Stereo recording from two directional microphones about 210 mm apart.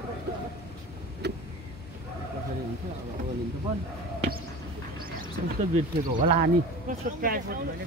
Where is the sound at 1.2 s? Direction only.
50° right (ahead or behind).